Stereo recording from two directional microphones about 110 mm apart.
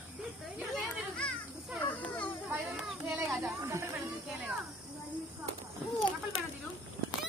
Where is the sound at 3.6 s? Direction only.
25° right (ahead or behind).